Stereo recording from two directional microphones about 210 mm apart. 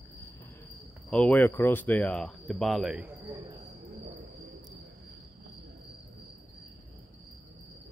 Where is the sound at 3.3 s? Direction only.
15° right (ahead or behind).